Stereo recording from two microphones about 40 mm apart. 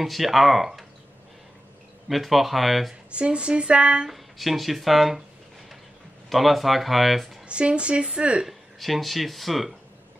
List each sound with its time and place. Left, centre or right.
0.0 s speech: centre
2.0 s speech: centre
3.1 s speech: right
4.1 s speech: centre
6.3 s speech: centre
7.4 s speech: right
8.5 s speech: centre